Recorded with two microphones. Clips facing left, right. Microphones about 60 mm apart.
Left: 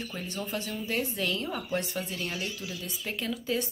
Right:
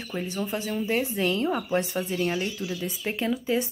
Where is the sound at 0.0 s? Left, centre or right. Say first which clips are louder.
Right 5 dB; centre.